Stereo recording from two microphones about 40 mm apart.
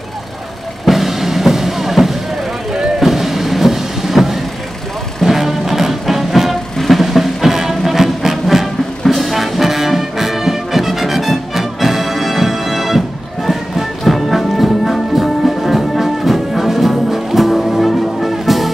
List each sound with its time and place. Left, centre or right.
0.8 s music: centre
2.7 s a sound: centre
3.1 s music: centre